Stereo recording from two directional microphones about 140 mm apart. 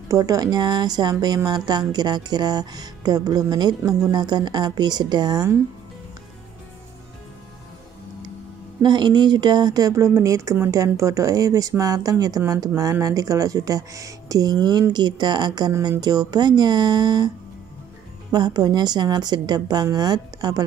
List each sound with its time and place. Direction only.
0.1 s speech: 25° right (ahead or behind)
8.8 s speech: 30° right (ahead or behind)
18.3 s speech: 30° right (ahead or behind)